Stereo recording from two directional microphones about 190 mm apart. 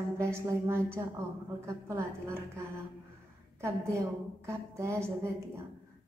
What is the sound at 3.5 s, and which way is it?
A woman's voice, 15° right (ahead or behind).